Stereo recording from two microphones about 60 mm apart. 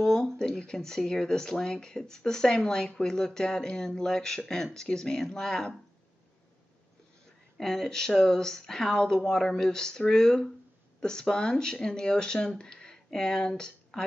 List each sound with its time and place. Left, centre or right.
0.0 s speech: centre
7.5 s speech: centre